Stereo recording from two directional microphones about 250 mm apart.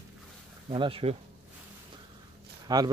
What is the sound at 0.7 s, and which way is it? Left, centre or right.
Speech, right.